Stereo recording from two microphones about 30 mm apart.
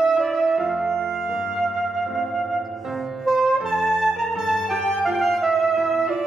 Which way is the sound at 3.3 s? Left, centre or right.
Centre.